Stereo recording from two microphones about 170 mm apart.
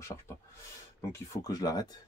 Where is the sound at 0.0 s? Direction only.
15° left (ahead or behind).